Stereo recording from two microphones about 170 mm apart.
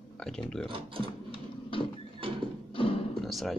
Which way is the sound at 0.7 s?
30° right (ahead or behind).